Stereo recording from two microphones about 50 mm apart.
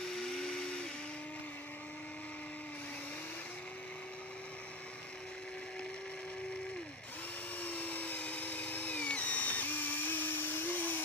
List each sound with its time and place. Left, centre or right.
0.1 s blender: centre
7.6 s drill: left